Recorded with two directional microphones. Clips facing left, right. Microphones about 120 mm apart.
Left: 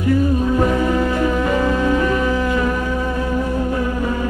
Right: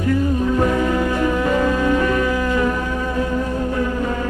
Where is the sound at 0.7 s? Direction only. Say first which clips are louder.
Left 1 dB; 15° left (ahead or behind).